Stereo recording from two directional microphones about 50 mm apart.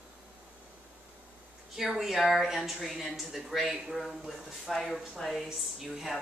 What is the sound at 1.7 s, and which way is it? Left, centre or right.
Speech, centre.